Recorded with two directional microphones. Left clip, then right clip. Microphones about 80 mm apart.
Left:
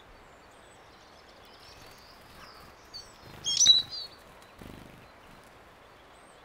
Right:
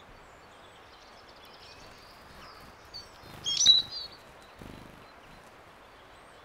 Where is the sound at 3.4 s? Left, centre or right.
Left.